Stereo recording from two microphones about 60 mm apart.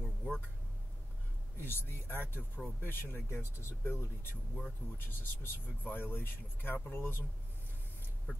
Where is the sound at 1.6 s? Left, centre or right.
Left.